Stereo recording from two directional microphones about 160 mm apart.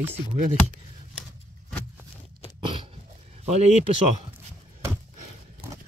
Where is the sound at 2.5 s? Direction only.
30° right (ahead or behind).